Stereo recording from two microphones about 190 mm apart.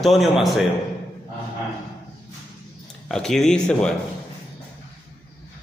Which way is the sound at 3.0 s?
5° left (ahead or behind).